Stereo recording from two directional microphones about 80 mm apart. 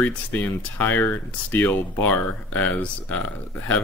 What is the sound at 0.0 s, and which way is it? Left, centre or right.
Speech, left.